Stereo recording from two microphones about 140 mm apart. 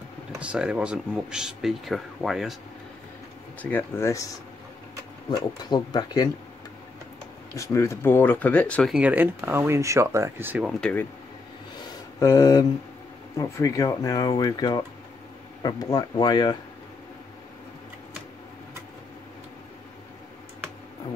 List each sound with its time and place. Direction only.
0.4 s speech: 10° right (ahead or behind)
3.7 s speech: 20° left (ahead or behind)
5.3 s speech: 30° left (ahead or behind)
7.5 s speech: 20° left (ahead or behind)
8.9 s speech: 10° right (ahead or behind)
10.6 s speech: 5° left (ahead or behind)
12.2 s speech: 20° left (ahead or behind)